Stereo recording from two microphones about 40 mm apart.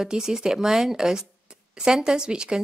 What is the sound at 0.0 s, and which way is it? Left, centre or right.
A woman's voice, centre.